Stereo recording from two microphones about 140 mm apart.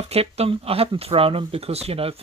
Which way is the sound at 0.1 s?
45° right (ahead or behind).